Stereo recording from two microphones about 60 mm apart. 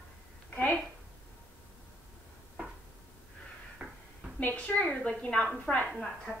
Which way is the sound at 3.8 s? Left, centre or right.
Centre.